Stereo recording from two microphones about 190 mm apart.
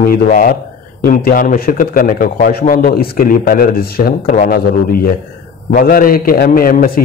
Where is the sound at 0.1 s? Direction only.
45° left (ahead or behind).